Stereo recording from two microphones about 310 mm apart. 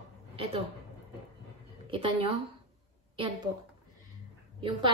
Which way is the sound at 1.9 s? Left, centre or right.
Centre.